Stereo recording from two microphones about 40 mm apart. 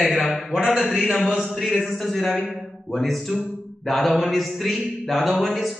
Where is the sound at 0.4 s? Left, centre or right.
Centre.